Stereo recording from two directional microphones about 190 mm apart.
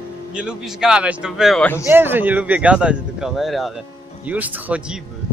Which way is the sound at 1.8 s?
10° right (ahead or behind).